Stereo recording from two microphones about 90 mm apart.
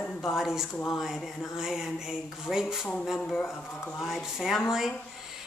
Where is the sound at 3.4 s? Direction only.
20° left (ahead or behind).